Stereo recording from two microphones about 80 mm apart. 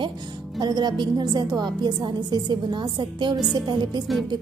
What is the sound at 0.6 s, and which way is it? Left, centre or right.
A woman's voice, right.